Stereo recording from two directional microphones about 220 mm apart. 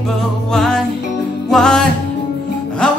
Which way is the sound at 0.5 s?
5° left (ahead or behind).